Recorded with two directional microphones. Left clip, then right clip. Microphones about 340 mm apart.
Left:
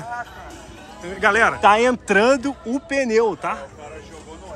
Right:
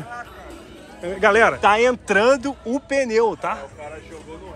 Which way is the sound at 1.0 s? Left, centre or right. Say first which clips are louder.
Right 1 dB; centre.